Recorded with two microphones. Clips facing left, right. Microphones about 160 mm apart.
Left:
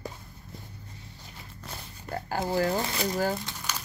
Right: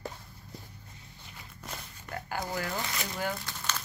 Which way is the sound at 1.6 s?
30° left (ahead or behind).